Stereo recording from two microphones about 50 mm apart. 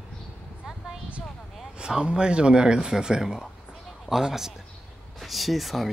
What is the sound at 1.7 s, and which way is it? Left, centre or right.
Speech, centre.